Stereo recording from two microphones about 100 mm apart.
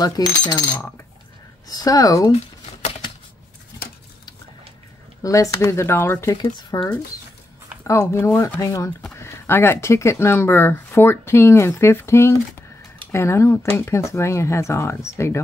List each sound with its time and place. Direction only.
0.0 s coin: 40° left (ahead or behind)
5.2 s speech: 35° left (ahead or behind)
6.7 s coin: 35° left (ahead or behind)
7.8 s speech: 30° left (ahead or behind)